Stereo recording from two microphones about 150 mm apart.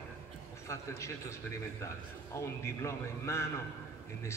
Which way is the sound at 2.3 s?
20° left (ahead or behind).